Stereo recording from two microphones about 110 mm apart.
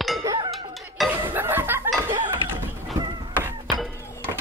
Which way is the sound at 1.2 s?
20° right (ahead or behind).